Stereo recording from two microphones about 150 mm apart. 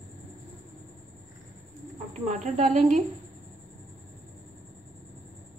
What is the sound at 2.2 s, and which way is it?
Speech, 45° right (ahead or behind).